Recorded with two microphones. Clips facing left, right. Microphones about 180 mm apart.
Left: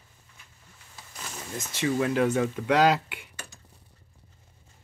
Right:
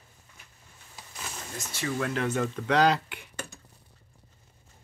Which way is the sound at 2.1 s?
10° left (ahead or behind).